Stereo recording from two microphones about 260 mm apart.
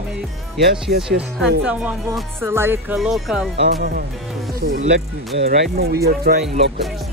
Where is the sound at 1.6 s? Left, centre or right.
Centre.